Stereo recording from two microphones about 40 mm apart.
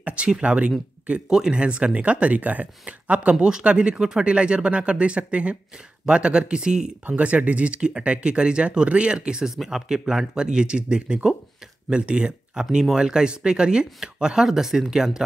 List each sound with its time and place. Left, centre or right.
0.0 s a sound: right
0.4 s speech: right
1.3 s speech: centre
3.7 s speech: right
7.2 s speech: right
9.6 s speech: centre